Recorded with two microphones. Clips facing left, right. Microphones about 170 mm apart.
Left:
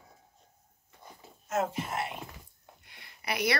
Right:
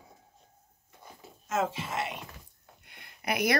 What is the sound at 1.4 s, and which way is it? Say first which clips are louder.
Whispering: even; 90° right.